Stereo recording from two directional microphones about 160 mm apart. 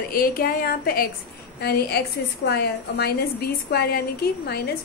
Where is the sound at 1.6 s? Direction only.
90° left.